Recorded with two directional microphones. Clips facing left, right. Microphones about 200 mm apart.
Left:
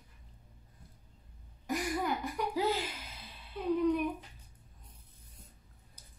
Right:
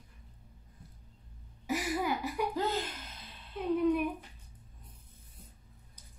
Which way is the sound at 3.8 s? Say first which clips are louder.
Right 1 dB; 5° right (ahead or behind).